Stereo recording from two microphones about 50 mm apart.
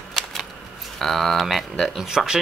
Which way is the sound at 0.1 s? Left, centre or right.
Centre.